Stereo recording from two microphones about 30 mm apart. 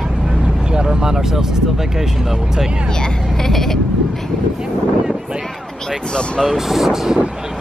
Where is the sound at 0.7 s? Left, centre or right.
Right.